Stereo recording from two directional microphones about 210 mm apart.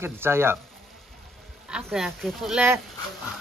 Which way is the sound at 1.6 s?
5° right (ahead or behind).